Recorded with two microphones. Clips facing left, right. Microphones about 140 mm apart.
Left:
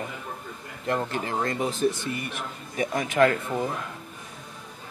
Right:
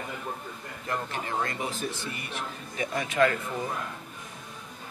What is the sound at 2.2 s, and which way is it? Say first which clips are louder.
A man's voice: left 1 dB; 45° left (ahead or behind).